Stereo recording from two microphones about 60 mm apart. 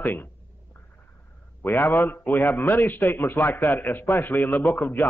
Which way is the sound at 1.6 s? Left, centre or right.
Left.